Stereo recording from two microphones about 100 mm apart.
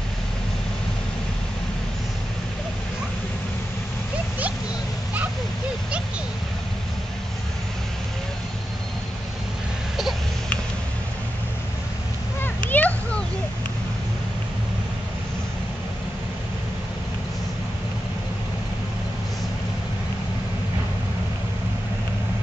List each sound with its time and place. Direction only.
12.5 s children playing: 15° left (ahead or behind)